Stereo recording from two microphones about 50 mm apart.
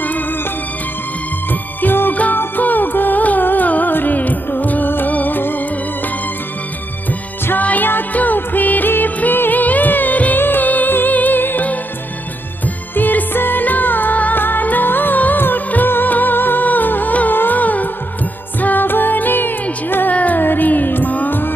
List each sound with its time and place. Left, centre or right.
1.5 s music: left
7.5 s music: left
12.9 s music: left